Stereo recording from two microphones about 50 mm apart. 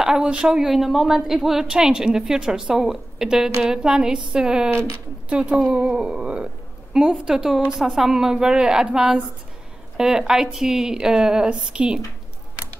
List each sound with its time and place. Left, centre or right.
0.2 s speech: right
0.5 s speech: centre